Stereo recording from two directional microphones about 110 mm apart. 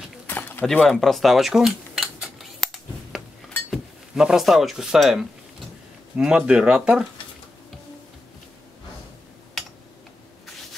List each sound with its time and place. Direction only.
0.3 s a sound: 20° left (ahead or behind)
0.8 s cutlery: 5° left (ahead or behind)
3.7 s speech: 5° right (ahead or behind)